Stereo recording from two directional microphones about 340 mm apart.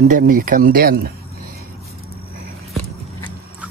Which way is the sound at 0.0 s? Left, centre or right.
Right.